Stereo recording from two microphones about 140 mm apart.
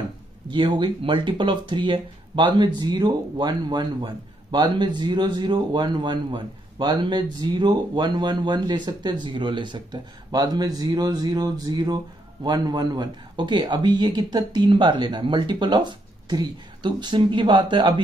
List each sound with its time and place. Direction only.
0.5 s speech: 35° right (ahead or behind)